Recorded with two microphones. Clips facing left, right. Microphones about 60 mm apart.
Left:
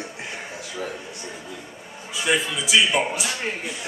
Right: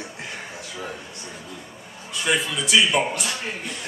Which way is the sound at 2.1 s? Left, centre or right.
Centre.